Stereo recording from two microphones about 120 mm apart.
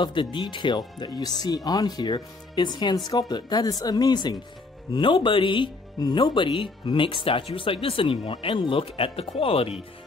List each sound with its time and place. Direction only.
0.0 s speech: 45° left (ahead or behind)